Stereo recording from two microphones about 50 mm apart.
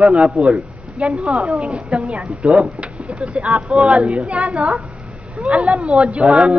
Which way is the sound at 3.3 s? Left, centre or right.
Right.